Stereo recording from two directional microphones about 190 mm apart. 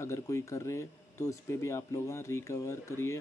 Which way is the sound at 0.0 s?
15° left (ahead or behind).